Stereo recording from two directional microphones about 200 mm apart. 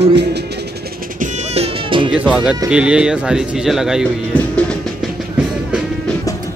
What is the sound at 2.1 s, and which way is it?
Speech, 5° right (ahead or behind).